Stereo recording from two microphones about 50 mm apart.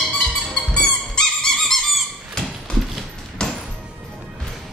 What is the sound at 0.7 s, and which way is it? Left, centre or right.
Squeak, centre.